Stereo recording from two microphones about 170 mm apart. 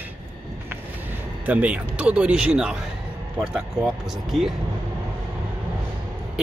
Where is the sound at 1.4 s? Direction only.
10° right (ahead or behind).